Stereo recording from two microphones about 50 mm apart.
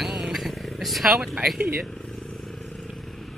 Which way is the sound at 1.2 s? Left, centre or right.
Centre.